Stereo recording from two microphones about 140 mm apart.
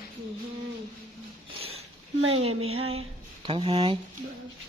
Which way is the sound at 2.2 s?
45° right (ahead or behind).